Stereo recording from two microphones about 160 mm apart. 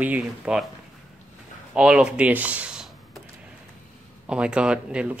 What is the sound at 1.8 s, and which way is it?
Speech, 5° right (ahead or behind).